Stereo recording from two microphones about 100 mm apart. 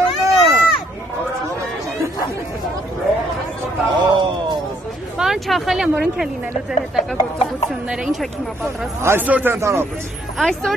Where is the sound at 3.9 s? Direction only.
50° right (ahead or behind).